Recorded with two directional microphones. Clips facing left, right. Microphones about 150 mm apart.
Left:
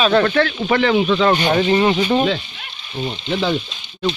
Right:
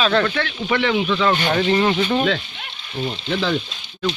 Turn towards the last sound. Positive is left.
turn(degrees=15)  # may be behind; listen again after turning